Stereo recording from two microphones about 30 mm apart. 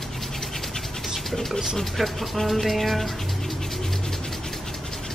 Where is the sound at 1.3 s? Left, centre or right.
Centre.